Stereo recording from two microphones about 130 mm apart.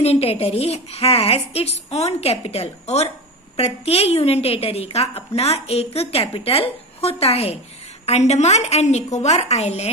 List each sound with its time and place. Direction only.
0.0 s a woman's voice: 50° left (ahead or behind)